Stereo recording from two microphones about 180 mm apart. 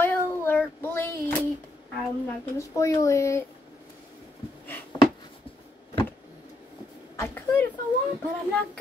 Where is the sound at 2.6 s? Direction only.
15° left (ahead or behind).